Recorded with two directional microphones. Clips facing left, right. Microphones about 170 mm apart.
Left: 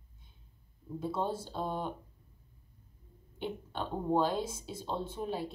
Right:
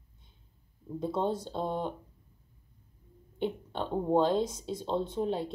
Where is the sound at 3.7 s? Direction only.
25° right (ahead or behind).